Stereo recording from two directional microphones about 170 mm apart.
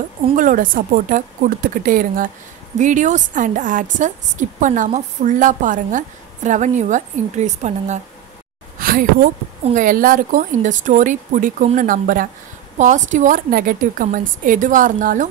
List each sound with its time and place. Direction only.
0.4 s a woman's voice: 55° right (ahead or behind)
8.7 s a woman's voice: 55° right (ahead or behind)